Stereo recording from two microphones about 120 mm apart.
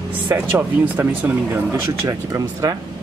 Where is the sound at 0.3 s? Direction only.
15° right (ahead or behind).